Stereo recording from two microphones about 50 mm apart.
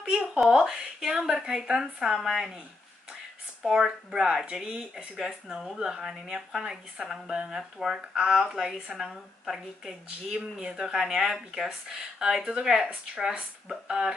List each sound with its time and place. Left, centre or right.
0.0 s a sound: centre
0.4 s speech: centre
3.8 s speech: centre
10.0 s speech: centre